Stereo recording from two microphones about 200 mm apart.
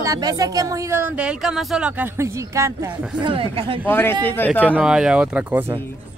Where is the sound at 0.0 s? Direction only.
20° right (ahead or behind).